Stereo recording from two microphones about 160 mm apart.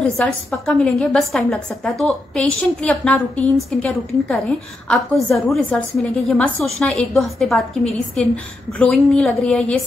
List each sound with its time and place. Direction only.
0.0 s a woman's voice: 5° left (ahead or behind)